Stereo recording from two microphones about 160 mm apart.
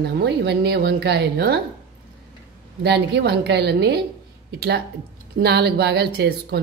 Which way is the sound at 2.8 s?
90° right.